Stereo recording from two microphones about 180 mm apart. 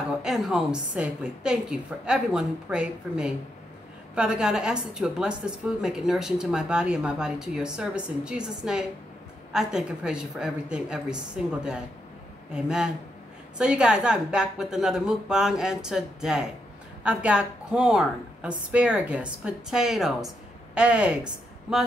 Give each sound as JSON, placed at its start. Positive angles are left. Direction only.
{"t": 0.2, "sound": "a woman's voice", "side_deg": 0}